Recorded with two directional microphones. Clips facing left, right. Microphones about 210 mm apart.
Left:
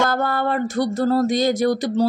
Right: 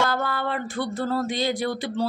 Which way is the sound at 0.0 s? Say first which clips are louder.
Left 5 dB; 45° left (ahead or behind).